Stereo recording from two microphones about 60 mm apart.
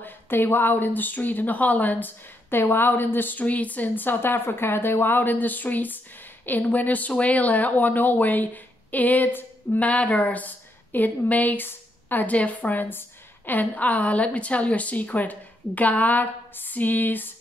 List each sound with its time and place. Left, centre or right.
0.0 s a woman's voice: left